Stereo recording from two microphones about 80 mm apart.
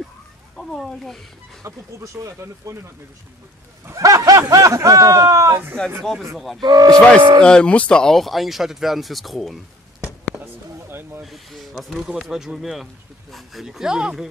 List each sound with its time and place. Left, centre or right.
0.6 s speech: centre
1.6 s speech: right
5.8 s speech: centre
6.6 s speech: right
7.2 s speech: right
7.4 s speech: centre
10.4 s a sound: right
11.2 s speech: centre
12.0 s speech: centre